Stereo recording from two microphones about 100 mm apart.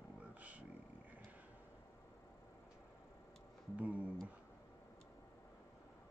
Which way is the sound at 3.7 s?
15° right (ahead or behind).